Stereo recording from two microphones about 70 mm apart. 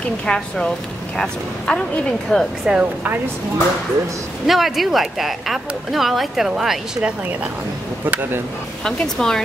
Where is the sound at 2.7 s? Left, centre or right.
Right.